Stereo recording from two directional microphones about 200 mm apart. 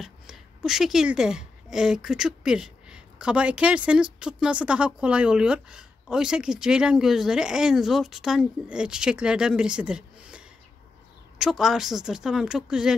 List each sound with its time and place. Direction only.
0.0 s speech: centre (ahead or behind)